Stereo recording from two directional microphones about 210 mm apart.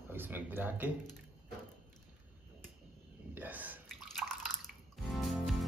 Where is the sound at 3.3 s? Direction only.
10° right (ahead or behind).